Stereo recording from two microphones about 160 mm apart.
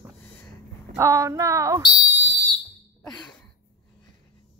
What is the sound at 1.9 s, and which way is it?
Fire alarm, 25° left (ahead or behind).